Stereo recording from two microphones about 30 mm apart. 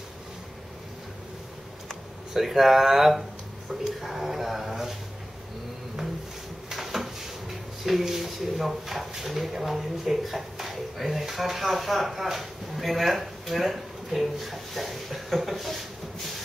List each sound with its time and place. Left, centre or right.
2.3 s speech: centre
6.7 s drawer open or close: centre
8.0 s speech: centre